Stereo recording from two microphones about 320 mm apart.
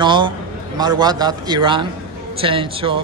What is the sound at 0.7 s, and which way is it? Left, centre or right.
A man's voice, centre.